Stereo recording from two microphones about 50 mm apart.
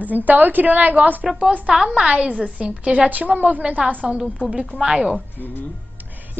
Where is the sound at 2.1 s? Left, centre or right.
Right.